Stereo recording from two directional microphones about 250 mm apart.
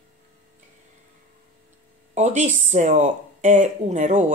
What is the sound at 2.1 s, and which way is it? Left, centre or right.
Speech, right.